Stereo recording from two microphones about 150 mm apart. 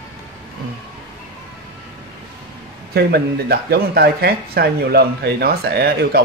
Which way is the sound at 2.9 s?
90° right.